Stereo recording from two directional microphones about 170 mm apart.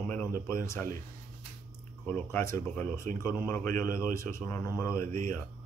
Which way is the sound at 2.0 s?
10° left (ahead or behind).